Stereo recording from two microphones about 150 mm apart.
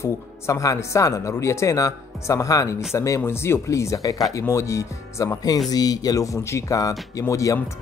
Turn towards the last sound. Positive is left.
turn(degrees=20)  # may be behind; listen again after turning